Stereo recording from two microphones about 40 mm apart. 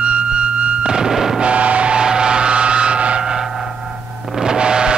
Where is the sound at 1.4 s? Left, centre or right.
Right.